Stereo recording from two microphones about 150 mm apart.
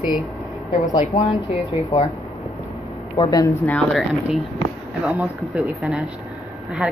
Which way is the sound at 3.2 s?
35° left (ahead or behind).